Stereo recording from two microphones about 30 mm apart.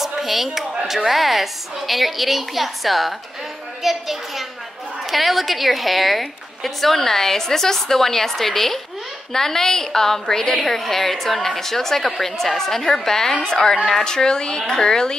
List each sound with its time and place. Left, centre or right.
0.0 s a child's voice: centre; by 15.1 s left